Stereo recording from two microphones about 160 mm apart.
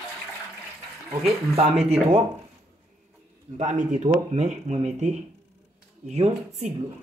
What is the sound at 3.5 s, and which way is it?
Speech, 50° right (ahead or behind).